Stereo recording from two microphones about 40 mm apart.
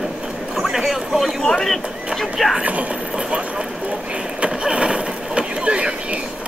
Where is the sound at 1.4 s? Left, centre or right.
Centre.